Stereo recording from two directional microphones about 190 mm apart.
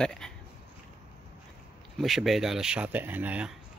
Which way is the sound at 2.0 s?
Centre (ahead or behind).